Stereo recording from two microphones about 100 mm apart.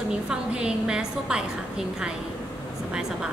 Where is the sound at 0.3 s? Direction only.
10° right (ahead or behind).